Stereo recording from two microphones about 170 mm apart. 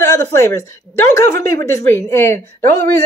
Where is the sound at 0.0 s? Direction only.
15° left (ahead or behind).